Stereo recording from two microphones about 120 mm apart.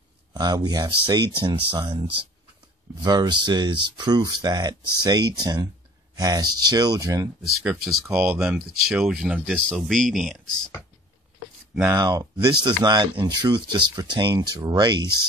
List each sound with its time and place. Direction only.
0.3 s speech: 35° right (ahead or behind)
7.6 s speech: centre (ahead or behind)
8.1 s speech: 10° right (ahead or behind)
9.6 s speech: 5° left (ahead or behind)
11.7 s speech: 20° right (ahead or behind)
12.0 s speech: 35° right (ahead or behind)